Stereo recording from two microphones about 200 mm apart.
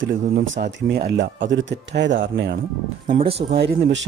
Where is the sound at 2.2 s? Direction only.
45° right (ahead or behind).